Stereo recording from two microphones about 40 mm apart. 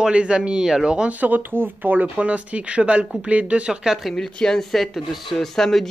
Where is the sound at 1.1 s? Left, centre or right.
Right.